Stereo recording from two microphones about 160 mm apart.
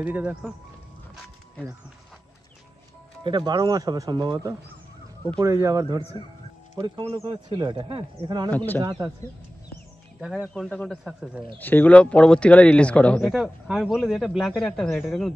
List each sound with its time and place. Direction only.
0.0 s speech: 10° right (ahead or behind)
3.3 s speech: 25° right (ahead or behind)
6.8 s speech: 35° right (ahead or behind)
8.5 s a man's voice: 10° left (ahead or behind)
10.5 s speech: 5° left (ahead or behind)